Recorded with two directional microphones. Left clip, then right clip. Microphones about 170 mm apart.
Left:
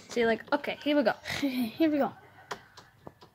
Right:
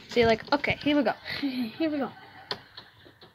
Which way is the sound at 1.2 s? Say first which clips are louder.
Even; 70° left (ahead or behind).